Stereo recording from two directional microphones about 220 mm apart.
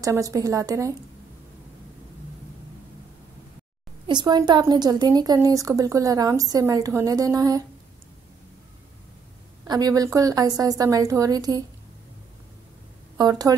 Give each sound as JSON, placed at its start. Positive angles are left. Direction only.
{"t": 0.0, "sound": "a woman's voice", "side_deg": -15}
{"t": 4.1, "sound": "a woman's voice", "side_deg": -20}
{"t": 9.7, "sound": "a woman's voice", "side_deg": -15}
{"t": 13.2, "sound": "a woman's voice", "side_deg": -15}